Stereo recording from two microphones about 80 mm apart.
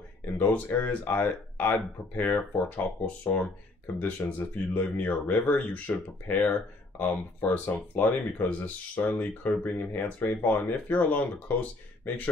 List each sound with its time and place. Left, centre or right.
0.4 s speech: left